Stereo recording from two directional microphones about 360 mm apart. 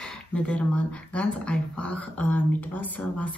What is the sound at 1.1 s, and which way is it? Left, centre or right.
A woman's voice, centre.